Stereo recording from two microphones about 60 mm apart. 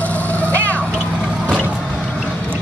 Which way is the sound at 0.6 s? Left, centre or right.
Left.